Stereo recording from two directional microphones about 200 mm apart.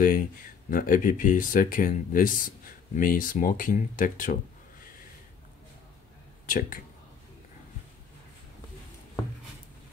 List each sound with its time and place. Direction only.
0.0 s speech: 45° left (ahead or behind)
6.4 s speech: 45° left (ahead or behind)